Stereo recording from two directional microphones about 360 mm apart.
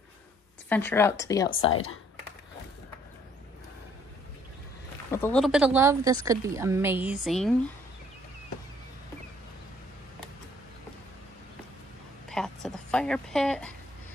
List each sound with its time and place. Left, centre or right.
0.7 s a woman's voice: centre
1.7 s speech: left
5.1 s speech: centre
12.3 s a sound: centre